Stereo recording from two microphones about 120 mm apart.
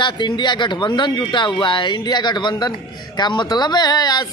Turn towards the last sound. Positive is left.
turn(degrees=35)  # may be behind; listen again after turning